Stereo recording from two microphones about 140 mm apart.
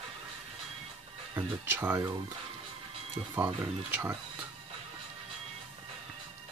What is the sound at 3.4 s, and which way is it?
Speech, 10° right (ahead or behind).